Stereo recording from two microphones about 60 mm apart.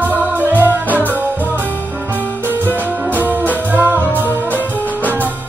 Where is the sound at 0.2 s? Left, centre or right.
Right.